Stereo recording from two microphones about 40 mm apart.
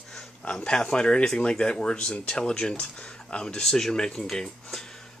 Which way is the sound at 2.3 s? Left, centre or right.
Centre.